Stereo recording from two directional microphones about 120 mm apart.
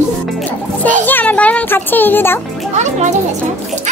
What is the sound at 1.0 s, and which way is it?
A child's voice, 15° left (ahead or behind).